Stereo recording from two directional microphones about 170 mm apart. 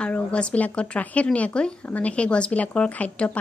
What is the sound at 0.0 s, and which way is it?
Speech, 5° left (ahead or behind).